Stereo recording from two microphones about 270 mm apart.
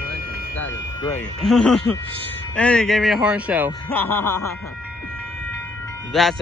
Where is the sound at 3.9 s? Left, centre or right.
Centre.